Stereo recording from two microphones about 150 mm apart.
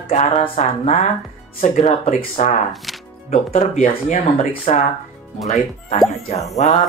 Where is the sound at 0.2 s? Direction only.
45° left (ahead or behind).